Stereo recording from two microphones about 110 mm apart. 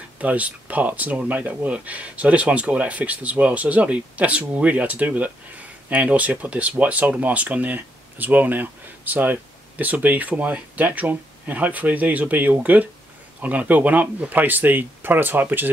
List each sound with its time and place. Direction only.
0.2 s speech: 15° right (ahead or behind)